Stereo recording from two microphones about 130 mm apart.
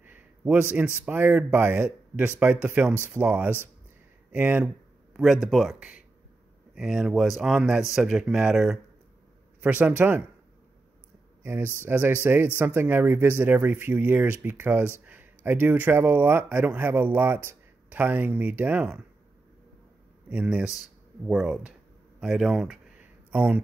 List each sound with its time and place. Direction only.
0.0 s a sound: 15° right (ahead or behind)
1.0 s speech: 15° right (ahead or behind)
5.1 s speech: centre (ahead or behind)
11.4 s speech: 15° right (ahead or behind)
20.2 s speech: 10° right (ahead or behind)
22.2 s a sound: 5° right (ahead or behind)